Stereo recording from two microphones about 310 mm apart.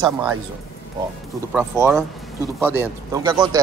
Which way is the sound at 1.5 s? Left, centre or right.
Centre.